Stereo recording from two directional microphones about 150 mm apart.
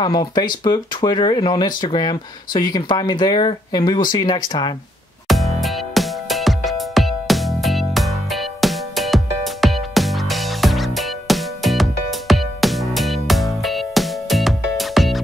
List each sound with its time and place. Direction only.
0.0 s speech: 30° left (ahead or behind)
5.3 s music: centre (ahead or behind)